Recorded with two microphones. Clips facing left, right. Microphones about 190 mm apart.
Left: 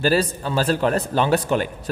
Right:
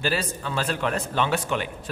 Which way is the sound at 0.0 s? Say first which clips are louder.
Left 7 dB; 40° left (ahead or behind).